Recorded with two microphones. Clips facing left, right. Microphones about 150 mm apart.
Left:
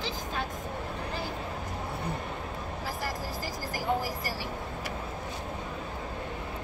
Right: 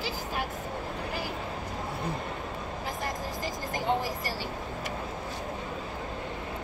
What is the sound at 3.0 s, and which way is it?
Vehicle, 20° right (ahead or behind).